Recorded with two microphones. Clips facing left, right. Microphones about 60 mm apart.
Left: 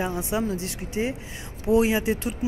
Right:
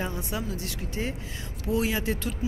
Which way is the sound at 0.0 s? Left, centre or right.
Centre.